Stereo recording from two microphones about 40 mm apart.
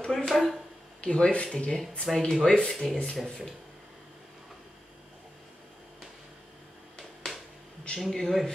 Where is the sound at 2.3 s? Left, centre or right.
Centre.